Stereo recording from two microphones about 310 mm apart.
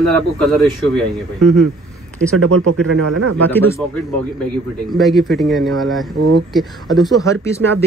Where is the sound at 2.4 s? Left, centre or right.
Right.